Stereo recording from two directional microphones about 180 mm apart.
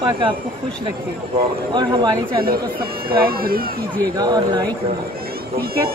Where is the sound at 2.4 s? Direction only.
55° right (ahead or behind).